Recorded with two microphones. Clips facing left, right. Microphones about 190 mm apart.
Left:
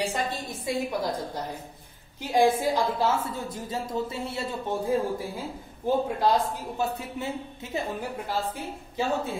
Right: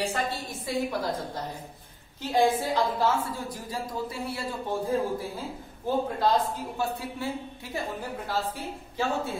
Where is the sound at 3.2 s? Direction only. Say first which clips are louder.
Left 1 dB; 25° left (ahead or behind).